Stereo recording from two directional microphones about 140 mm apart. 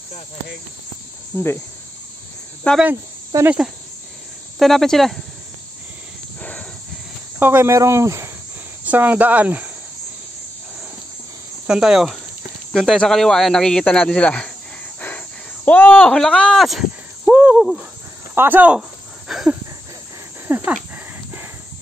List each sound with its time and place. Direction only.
1.3 s speech: 10° left (ahead or behind)
2.6 s speech: 10° left (ahead or behind)
3.4 s speech: 5° right (ahead or behind)
7.3 s speech: 15° right (ahead or behind)
11.6 s speech: 5° right (ahead or behind)
15.0 s a sound: 10° left (ahead or behind)
20.4 s dog: 15° right (ahead or behind)